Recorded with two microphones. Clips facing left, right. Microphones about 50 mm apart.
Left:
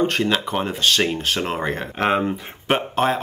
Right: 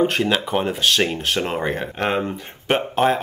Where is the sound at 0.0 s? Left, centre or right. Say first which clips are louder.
Right 1 dB; centre.